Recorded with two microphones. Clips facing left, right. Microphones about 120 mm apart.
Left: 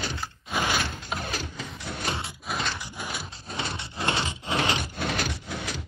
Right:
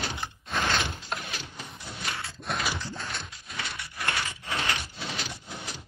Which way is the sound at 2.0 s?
25° left (ahead or behind).